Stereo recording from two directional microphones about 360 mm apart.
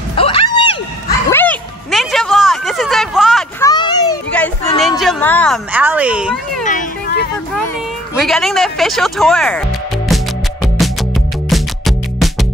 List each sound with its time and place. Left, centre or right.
0.1 s a sound: centre
1.3 s music: centre
3.7 s children playing: centre
6.6 s a sound: left
8.2 s speech: centre
10.0 s music: centre